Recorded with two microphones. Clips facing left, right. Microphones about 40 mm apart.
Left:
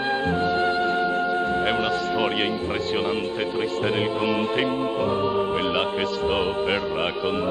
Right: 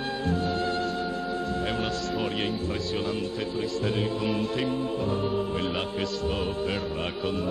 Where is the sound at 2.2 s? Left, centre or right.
Left.